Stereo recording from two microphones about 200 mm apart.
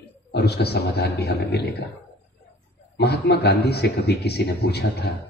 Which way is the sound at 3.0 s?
55° left (ahead or behind).